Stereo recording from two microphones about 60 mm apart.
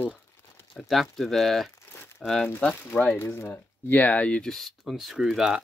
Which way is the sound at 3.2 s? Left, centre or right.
Left.